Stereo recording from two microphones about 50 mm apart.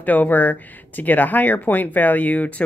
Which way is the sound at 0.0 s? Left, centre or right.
Left.